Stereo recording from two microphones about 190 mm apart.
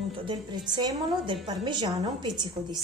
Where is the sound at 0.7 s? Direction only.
20° right (ahead or behind).